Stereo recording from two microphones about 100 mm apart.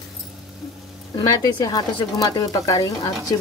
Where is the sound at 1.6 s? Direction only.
35° left (ahead or behind).